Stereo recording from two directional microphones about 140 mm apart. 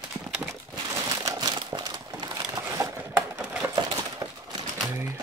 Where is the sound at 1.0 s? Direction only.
25° right (ahead or behind).